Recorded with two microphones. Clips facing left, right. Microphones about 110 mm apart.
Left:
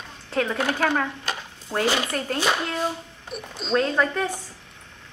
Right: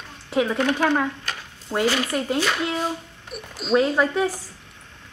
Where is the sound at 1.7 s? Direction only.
Centre (ahead or behind).